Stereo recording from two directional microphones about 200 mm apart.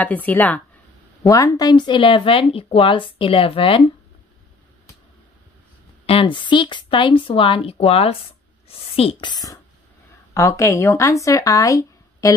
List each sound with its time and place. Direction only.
0.0 s speech: 10° left (ahead or behind); by 3.9 s 25° left (ahead or behind)
6.0 s speech: 25° left (ahead or behind)